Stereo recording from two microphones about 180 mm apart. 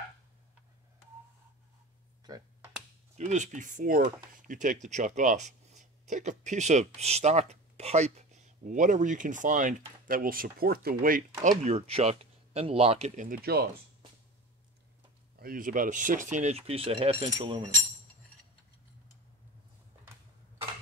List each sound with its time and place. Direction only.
3.2 s speech: 40° right (ahead or behind); by 13.7 s 60° right (ahead or behind)
15.3 s speech: 55° right (ahead or behind); by 17.6 s 30° right (ahead or behind)